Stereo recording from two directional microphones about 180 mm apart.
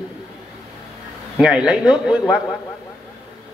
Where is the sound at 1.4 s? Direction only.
5° right (ahead or behind).